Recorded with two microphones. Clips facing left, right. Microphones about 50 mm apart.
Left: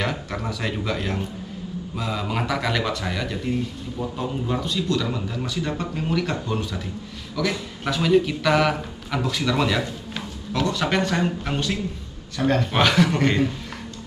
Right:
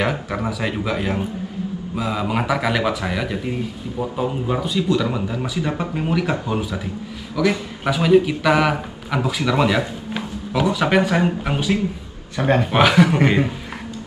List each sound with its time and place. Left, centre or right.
0.0 s a man's voice: centre
12.4 s a man's voice: right